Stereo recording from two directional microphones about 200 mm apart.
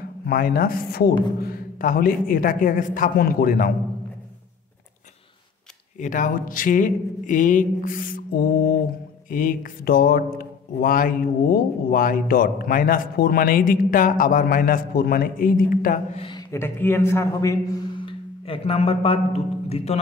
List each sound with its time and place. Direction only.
0.3 s speech: 50° left (ahead or behind)
5.9 s speech: 40° left (ahead or behind)
16.2 s a sound: 25° left (ahead or behind)
16.5 s a man's voice: 10° left (ahead or behind); by 20.0 s 30° left (ahead or behind)